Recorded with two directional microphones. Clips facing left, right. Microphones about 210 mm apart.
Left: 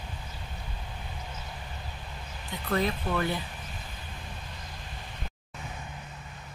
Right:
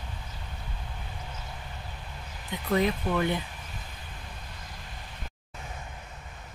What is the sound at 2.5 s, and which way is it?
Speech, 15° right (ahead or behind).